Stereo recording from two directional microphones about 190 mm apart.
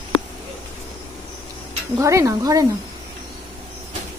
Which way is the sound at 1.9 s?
15° right (ahead or behind).